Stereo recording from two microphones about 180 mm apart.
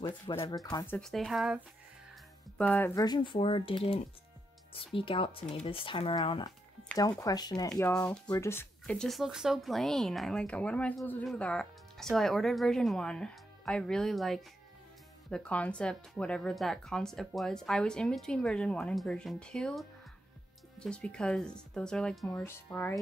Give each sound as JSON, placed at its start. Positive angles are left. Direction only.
{"t": 0.0, "sound": "speech", "side_deg": 30}
{"t": 0.9, "sound": "speech", "side_deg": 0}
{"t": 2.5, "sound": "speech", "side_deg": 10}
{"t": 3.0, "sound": "speech", "side_deg": 25}
{"t": 7.7, "sound": "speech", "side_deg": 5}
{"t": 22.3, "sound": "speech", "side_deg": 15}